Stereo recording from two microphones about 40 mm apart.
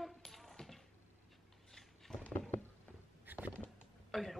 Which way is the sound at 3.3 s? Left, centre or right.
Right.